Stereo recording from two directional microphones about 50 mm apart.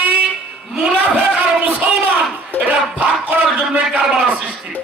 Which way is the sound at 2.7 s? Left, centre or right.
Right.